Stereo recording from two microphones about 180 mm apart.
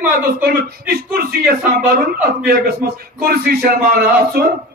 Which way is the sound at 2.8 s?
55° right (ahead or behind).